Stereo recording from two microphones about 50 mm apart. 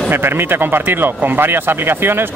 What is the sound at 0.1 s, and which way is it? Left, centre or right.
Speech, right.